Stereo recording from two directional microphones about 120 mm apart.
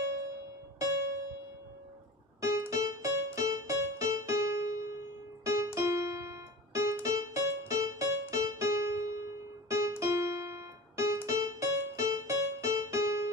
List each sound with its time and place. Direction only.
2.4 s music: 25° right (ahead or behind)
5.4 s keyboard: 25° right (ahead or behind)